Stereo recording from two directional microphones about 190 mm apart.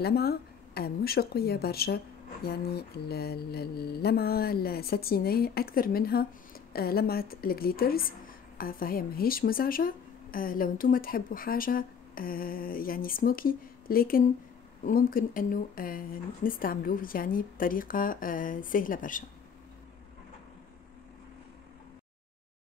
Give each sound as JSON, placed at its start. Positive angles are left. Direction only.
{"t": 0.0, "sound": "speech", "side_deg": 55}